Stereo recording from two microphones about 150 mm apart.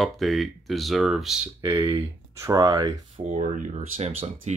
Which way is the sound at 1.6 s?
15° right (ahead or behind).